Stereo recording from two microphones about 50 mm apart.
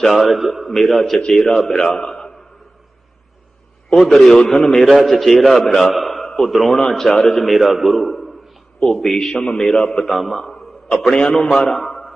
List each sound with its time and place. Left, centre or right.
0.0 s a man's voice: centre
3.9 s a man's voice: centre
9.2 s a man's voice: centre
11.1 s a man's voice: centre
11.5 s a man's voice: centre